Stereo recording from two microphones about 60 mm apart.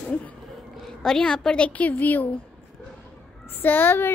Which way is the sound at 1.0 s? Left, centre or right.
Centre.